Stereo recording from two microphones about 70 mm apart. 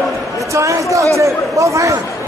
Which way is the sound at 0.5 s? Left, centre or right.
Right.